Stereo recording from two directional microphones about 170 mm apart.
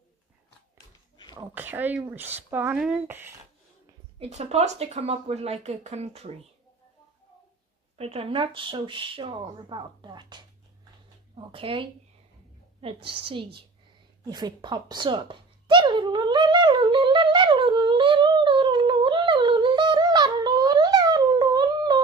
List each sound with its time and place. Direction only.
1.3 s speech: 15° right (ahead or behind)
4.2 s a woman's voice: 40° right (ahead or behind)
8.0 s a woman's voice: 35° right (ahead or behind)
14.2 s a sound: 25° right (ahead or behind)